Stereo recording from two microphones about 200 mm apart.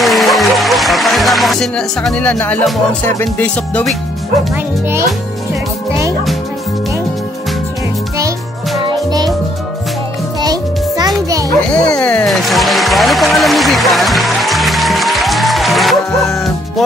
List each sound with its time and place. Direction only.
0.0 s music: centre (ahead or behind)
8.8 s music: 20° right (ahead or behind)
10.4 s music: 20° right (ahead or behind)
11.7 s music: 5° left (ahead or behind)